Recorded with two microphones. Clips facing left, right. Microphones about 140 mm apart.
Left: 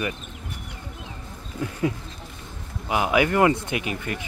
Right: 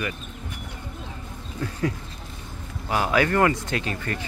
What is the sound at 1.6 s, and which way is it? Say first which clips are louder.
Speech: left 1 dB; 15° left (ahead or behind).